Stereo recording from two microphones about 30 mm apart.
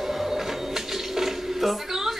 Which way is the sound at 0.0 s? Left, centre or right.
Centre.